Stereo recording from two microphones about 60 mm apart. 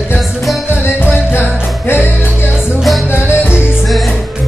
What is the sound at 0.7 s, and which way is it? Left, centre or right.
Music, left.